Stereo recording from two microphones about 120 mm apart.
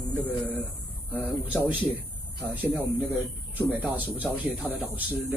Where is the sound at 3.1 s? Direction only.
15° right (ahead or behind).